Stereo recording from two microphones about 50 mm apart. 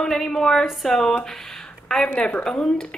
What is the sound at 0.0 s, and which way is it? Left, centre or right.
Speech, centre.